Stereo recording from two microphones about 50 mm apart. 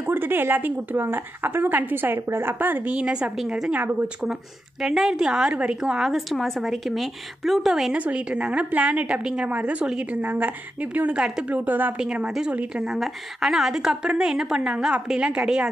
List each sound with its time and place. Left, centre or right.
0.0 s a woman's voice: right
2.2 s speech: right
2.8 s a woman's voice: right
4.2 s a woman's voice: centre
5.5 s a woman's voice: right
5.8 s a woman's voice: centre
7.9 s a woman's voice: right
12.0 s a woman's voice: right